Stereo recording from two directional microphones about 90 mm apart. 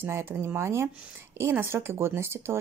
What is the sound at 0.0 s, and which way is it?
A woman's voice, 25° right (ahead or behind).